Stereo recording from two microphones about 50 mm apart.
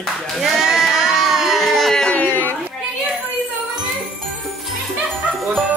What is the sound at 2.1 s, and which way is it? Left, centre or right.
Chatter, left.